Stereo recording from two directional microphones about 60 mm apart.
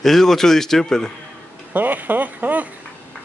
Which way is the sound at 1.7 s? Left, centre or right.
Right.